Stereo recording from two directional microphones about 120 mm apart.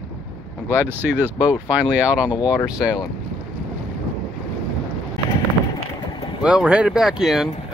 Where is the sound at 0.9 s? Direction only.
15° right (ahead or behind).